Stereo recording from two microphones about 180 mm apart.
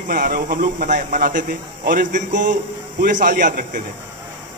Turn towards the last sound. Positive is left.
turn(degrees=-45)  # may be behind; listen again after turning